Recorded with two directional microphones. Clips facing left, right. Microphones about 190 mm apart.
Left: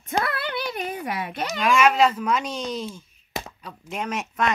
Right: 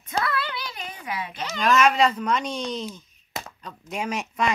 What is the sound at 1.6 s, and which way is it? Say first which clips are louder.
Speech: left 1 dB; 5° left (ahead or behind).